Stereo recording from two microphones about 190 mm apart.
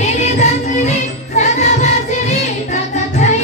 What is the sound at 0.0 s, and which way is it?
Music, 35° left (ahead or behind).